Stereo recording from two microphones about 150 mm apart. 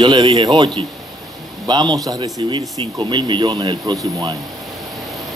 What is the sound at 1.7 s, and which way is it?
Speech, 30° right (ahead or behind).